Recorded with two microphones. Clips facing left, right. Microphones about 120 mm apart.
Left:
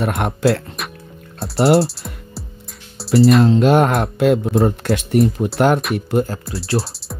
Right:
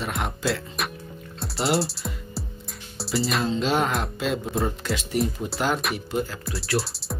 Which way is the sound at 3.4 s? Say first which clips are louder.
Left 10 dB; 60° left (ahead or behind).